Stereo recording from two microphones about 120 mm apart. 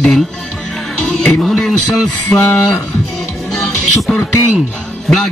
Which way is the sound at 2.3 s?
20° left (ahead or behind).